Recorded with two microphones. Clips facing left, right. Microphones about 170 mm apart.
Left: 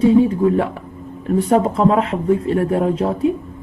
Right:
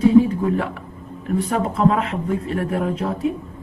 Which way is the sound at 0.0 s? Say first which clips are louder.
Left 1 dB; 30° left (ahead or behind).